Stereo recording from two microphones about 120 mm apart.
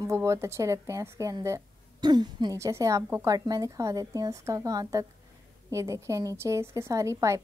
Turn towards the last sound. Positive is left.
turn(degrees=-25)  # may be behind; listen again after turning